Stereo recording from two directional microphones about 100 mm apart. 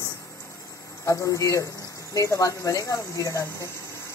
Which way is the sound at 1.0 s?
35° left (ahead or behind).